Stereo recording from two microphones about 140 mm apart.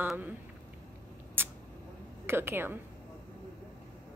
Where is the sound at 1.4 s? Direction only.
15° right (ahead or behind).